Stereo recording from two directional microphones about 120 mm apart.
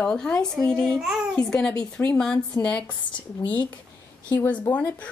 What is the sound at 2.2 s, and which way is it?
Speech, 10° left (ahead or behind).